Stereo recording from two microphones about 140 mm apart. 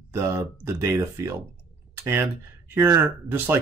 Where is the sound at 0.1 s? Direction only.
20° right (ahead or behind).